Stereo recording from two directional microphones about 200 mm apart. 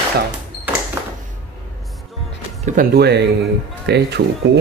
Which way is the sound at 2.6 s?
45° right (ahead or behind).